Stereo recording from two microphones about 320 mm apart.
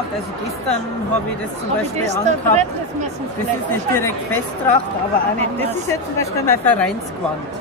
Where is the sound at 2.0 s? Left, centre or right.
Right.